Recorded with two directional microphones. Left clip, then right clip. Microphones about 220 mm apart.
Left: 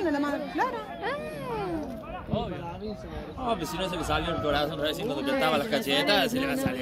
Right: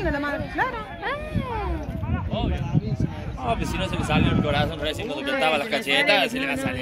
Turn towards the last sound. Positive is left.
turn(degrees=45)  # may be behind; listen again after turning